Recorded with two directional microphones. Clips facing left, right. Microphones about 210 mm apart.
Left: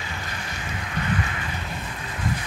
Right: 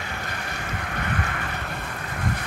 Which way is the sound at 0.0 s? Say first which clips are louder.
Right 1 dB; 55° right (ahead or behind).